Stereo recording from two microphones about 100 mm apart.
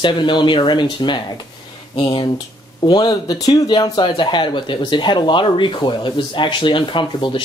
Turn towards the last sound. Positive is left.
turn(degrees=50)  # may be behind; listen again after turning